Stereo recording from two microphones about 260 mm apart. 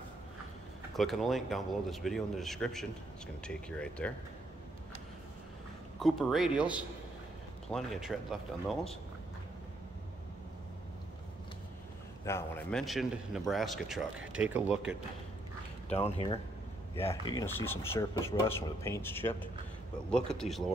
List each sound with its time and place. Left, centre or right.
0.9 s a man's voice: centre
5.9 s a man's voice: centre
12.3 s a man's voice: centre
16.0 s speech: left
16.9 s a man's voice: centre